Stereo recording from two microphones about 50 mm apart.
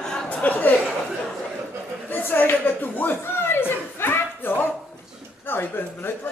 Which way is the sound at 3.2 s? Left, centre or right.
Left.